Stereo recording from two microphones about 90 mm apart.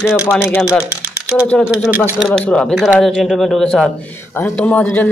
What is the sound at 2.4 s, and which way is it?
A man's voice, 10° left (ahead or behind).